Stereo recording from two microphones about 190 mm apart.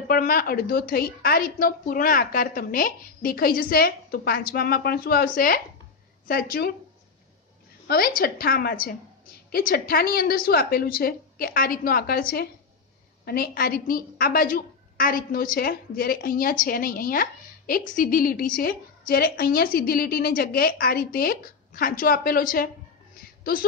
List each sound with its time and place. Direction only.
0.1 s a woman's voice: 50° left (ahead or behind)
7.8 s a woman's voice: 55° left (ahead or behind)